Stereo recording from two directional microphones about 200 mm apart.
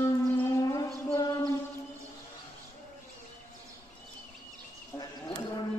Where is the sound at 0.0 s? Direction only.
15° left (ahead or behind).